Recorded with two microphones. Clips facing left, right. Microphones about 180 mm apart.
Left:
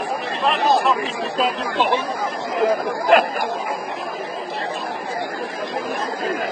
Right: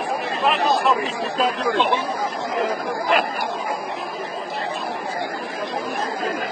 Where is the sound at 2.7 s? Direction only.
50° left (ahead or behind).